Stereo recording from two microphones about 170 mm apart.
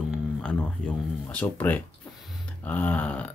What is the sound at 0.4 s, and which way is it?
Speech, 5° left (ahead or behind).